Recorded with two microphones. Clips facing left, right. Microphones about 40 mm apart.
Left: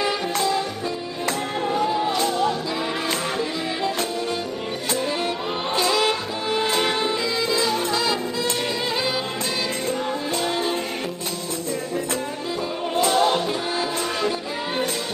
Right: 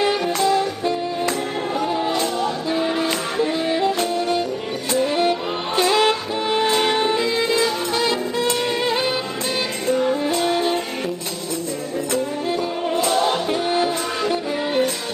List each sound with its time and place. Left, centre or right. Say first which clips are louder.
0.0 s music: right 4 dB; right
5.8 s music: right 4 dB; right
10.3 s music: right 4 dB; right
13.0 s music: left 1 dB; centre
13.5 s music: right 5 dB; right